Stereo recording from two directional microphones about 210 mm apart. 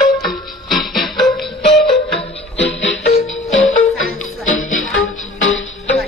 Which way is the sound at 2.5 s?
60° left (ahead or behind).